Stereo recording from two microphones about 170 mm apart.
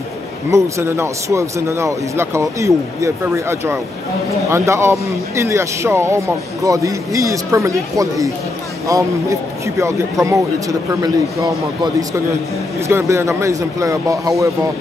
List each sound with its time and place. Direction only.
0.5 s speech: 15° right (ahead or behind)